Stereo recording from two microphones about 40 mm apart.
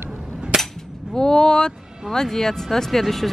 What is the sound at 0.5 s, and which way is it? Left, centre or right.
Cap gun, centre.